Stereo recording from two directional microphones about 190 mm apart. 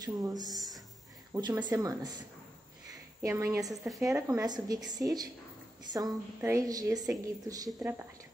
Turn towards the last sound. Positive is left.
turn(degrees=-20)  # may be behind; listen again after turning